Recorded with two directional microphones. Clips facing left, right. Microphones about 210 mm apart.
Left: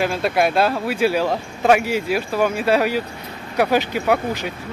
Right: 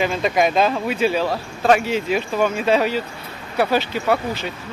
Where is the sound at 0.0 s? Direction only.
5° left (ahead or behind).